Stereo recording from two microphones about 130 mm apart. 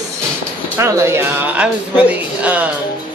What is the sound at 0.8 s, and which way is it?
Speech, 20° right (ahead or behind).